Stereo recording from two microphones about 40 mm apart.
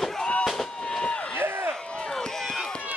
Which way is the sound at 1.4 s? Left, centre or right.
Right.